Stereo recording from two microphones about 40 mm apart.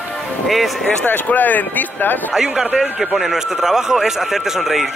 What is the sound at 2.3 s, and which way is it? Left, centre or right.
A man's voice, centre.